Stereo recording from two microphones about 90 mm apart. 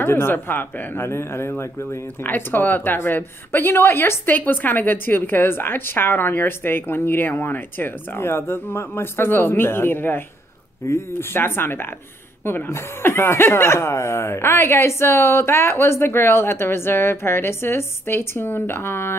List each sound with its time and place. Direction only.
0.0 s speech: 25° left (ahead or behind)